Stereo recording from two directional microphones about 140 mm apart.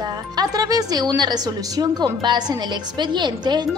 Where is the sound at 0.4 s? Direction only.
25° right (ahead or behind).